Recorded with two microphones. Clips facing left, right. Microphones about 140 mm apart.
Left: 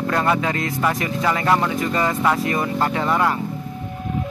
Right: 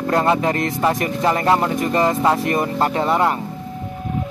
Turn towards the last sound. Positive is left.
turn(degrees=-25)  # may be behind; listen again after turning